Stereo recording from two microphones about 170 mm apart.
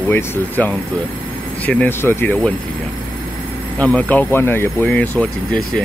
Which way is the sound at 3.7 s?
10° left (ahead or behind).